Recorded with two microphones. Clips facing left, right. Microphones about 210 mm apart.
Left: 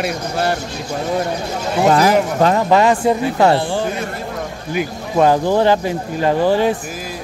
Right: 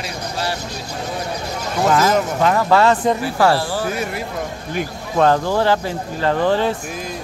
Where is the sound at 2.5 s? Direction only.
15° left (ahead or behind).